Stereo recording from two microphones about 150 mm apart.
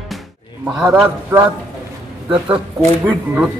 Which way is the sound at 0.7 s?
5° right (ahead or behind).